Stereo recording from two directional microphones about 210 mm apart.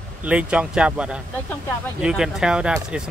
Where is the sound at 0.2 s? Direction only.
5° right (ahead or behind).